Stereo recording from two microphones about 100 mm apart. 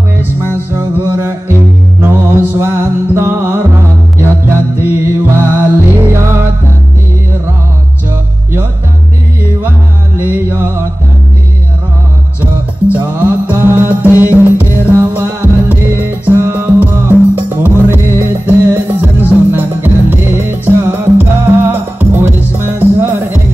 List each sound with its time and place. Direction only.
0.2 s music: 20° right (ahead or behind)
4.8 s music: 25° right (ahead or behind)
10.1 s music: 20° right (ahead or behind)
12.4 s music: 15° right (ahead or behind)